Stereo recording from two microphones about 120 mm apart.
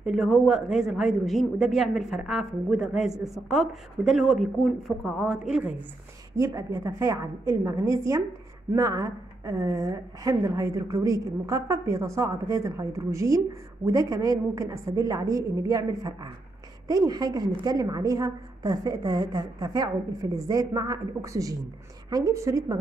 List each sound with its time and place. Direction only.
0.0 s a woman's voice: centre (ahead or behind)
6.3 s a woman's voice: 25° right (ahead or behind)